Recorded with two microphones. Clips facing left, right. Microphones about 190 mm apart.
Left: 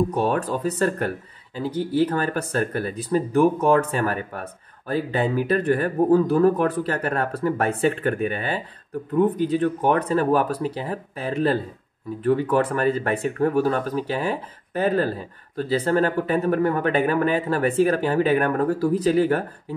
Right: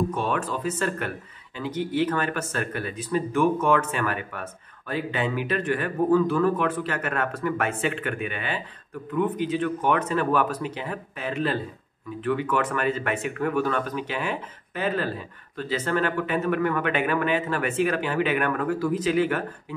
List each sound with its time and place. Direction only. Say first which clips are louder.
0.1 s speech: left 4 dB; 40° left (ahead or behind)